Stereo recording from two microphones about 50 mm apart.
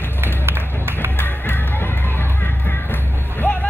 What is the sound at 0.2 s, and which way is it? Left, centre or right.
Music, right.